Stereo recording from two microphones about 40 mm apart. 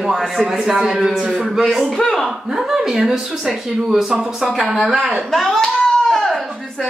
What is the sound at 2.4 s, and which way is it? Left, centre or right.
Speech, centre.